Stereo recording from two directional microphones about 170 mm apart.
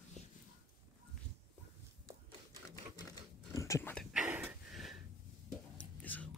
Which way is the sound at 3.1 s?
20° left (ahead or behind).